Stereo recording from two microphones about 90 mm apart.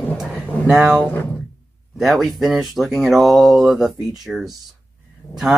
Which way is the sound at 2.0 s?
Centre (ahead or behind).